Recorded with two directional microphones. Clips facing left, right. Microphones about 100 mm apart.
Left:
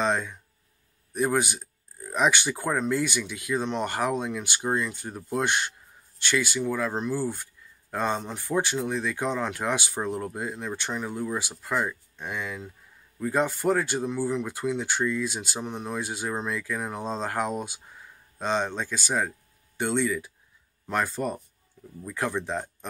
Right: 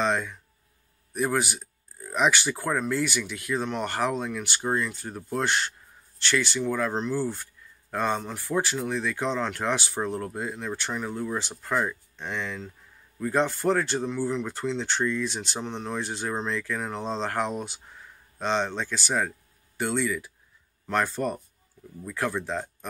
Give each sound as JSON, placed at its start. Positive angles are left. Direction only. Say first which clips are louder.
{"t": 0.0, "sound": "speech", "louder": "even", "side_deg": 15}